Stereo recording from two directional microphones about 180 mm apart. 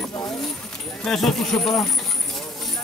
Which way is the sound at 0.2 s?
Centre (ahead or behind).